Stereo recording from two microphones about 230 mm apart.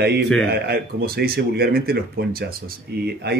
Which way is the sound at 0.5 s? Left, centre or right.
Right.